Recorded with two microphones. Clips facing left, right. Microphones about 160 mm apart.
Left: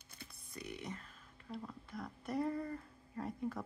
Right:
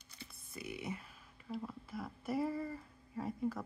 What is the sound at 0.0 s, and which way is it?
Computer keyboard, 50° left (ahead or behind).